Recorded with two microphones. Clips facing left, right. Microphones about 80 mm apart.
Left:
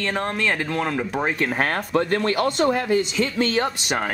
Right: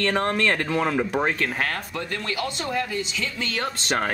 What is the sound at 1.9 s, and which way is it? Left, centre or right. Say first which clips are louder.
Speech: left 9 dB; left.